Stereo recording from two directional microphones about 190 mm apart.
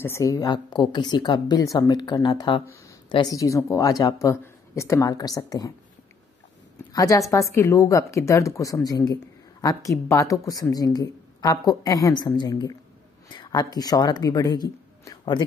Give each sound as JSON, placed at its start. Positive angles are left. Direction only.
{"t": 0.0, "sound": "a woman's voice", "side_deg": 15}
{"t": 6.9, "sound": "a woman's voice", "side_deg": 15}